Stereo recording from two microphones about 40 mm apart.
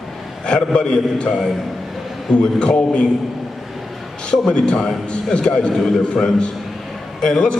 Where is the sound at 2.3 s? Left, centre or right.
Left.